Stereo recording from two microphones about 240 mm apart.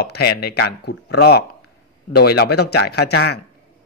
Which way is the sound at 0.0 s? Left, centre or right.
Left.